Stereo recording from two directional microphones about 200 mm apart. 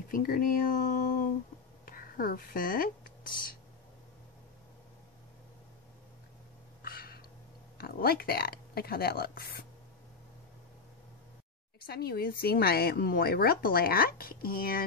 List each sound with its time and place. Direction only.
0.1 s speech: 45° left (ahead or behind)
6.8 s a sound: 50° left (ahead or behind)
7.7 s speech: 50° left (ahead or behind)
11.8 s speech: 50° left (ahead or behind)